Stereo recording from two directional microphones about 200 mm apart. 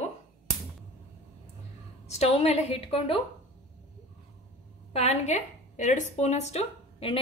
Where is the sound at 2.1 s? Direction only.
30° left (ahead or behind).